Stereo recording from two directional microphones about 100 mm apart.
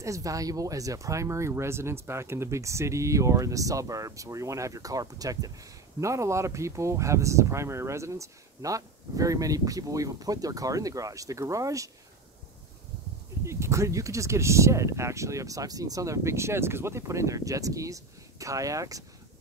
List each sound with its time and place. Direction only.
0.0 s speech: 35° right (ahead or behind)
13.4 s speech: 30° right (ahead or behind)